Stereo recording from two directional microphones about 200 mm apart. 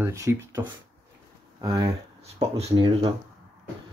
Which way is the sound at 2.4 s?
25° right (ahead or behind).